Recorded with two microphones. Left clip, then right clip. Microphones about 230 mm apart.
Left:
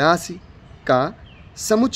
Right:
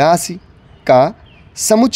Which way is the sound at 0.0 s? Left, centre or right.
Right.